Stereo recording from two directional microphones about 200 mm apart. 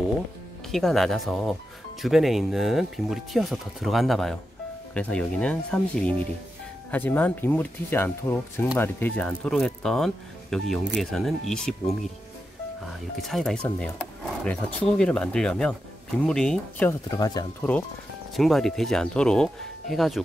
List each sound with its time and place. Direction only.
0.7 s speech: centre (ahead or behind)
13.2 s speech: centre (ahead or behind)
17.2 s speech: 20° left (ahead or behind)
18.3 s speech: centre (ahead or behind)